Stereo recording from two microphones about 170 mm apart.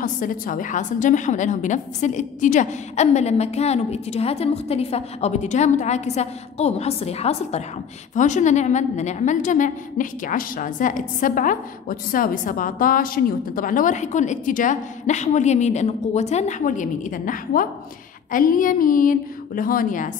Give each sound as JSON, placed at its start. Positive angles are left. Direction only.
{"t": 0.0, "sound": "a woman's voice", "side_deg": 50}